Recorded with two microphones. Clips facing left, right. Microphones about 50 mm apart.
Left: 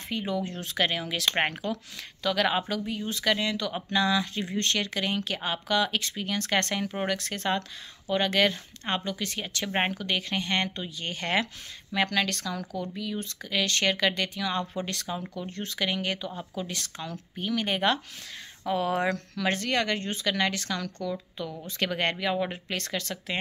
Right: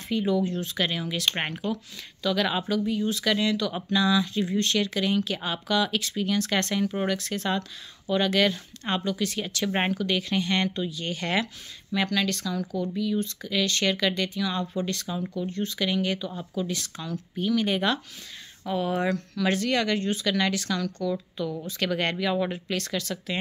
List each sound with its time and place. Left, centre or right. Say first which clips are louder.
0.1 s speech: right 6 dB; left
2.2 s speech: even; left
3.9 s speech: right 2 dB; left
9.7 s speech: right 1 dB; centre
9.9 s speech: right 3 dB; left
15.8 s speech: right 2 dB; left
18.8 s speech: right 1 dB; left
19.3 s speech: right 4 dB; left